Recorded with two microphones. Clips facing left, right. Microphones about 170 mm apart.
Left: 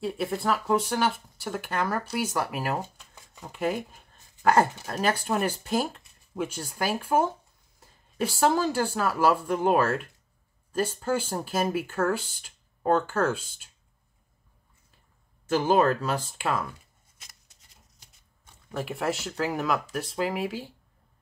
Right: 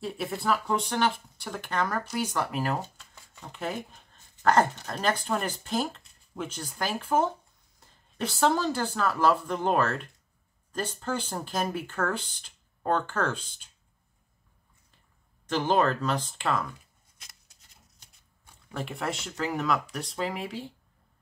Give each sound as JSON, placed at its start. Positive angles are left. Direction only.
{"t": 0.0, "sound": "speech", "side_deg": 0}
{"t": 15.4, "sound": "speech", "side_deg": 10}
{"t": 17.2, "sound": "a sound", "side_deg": 0}
{"t": 18.7, "sound": "speech", "side_deg": 5}